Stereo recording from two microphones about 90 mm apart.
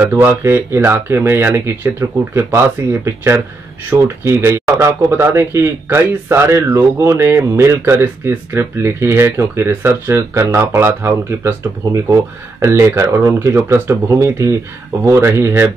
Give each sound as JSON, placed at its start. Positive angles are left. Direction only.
{"t": 0.0, "sound": "speech", "side_deg": -25}